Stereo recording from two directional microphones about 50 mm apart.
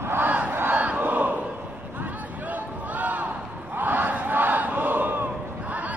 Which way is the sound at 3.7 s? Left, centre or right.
Right.